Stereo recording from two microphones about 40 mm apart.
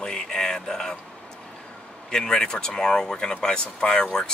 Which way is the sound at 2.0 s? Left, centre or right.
Centre.